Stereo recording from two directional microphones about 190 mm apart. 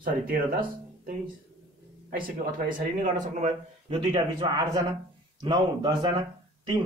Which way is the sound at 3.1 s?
40° right (ahead or behind).